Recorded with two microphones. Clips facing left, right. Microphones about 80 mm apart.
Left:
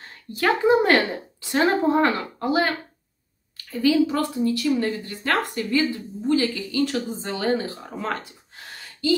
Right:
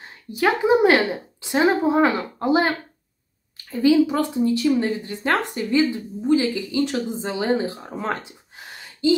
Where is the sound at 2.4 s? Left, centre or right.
Right.